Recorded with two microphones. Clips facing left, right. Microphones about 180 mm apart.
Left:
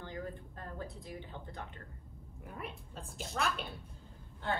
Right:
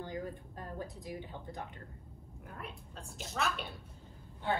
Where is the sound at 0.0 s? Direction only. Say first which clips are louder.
Right 2 dB; 15° right (ahead or behind).